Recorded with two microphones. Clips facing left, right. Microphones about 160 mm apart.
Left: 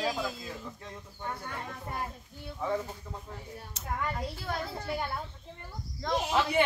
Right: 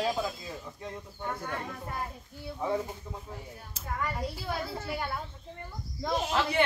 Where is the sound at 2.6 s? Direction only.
15° right (ahead or behind).